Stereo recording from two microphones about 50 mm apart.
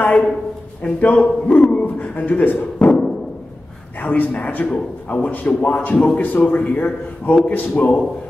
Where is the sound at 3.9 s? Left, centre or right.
Left.